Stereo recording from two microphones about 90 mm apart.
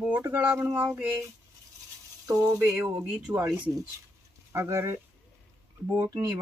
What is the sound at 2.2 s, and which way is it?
Speech, 40° right (ahead or behind).